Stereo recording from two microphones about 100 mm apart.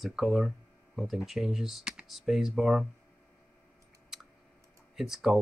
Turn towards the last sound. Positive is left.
turn(degrees=-5)  # may be behind; listen again after turning